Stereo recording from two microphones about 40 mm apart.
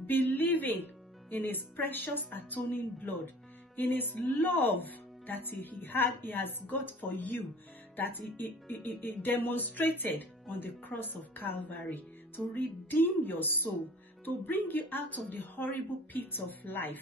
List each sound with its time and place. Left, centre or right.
0.0 s speech: left